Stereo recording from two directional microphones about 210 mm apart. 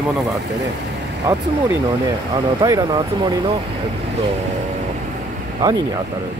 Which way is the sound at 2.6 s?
20° right (ahead or behind).